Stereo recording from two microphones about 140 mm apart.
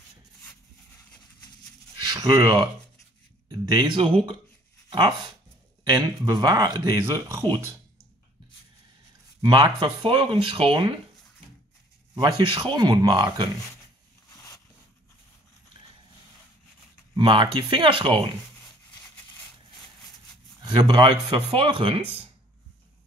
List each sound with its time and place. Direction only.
2.0 s a sound: 25° right (ahead or behind)
3.6 s speech: 35° right (ahead or behind)
4.8 s a sound: 35° right (ahead or behind)
5.9 s speech: 25° right (ahead or behind)
9.4 s speech: 30° right (ahead or behind)
12.2 s speech: 30° right (ahead or behind)
14.3 s a sound: 25° left (ahead or behind)
17.1 s speech: 35° right (ahead or behind)
20.6 s speech: 35° right (ahead or behind)